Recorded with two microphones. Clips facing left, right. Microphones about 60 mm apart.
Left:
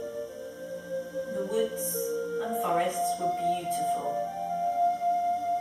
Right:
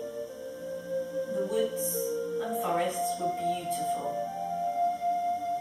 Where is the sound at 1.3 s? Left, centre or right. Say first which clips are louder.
Left 1 dB; centre.